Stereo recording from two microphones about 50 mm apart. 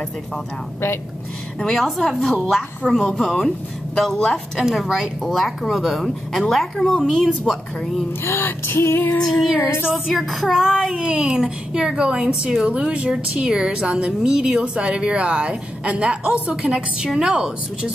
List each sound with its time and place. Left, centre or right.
1.8 s speech: centre
4.6 s a woman's voice: centre
7.5 s speech: centre
8.2 s music: left
9.2 s speech: centre
9.8 s speech: centre
11.1 s a woman's voice: centre